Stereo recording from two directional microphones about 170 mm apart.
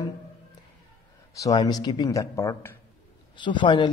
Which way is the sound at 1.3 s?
20° left (ahead or behind).